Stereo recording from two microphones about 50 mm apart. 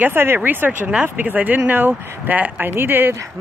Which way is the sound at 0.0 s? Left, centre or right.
Right.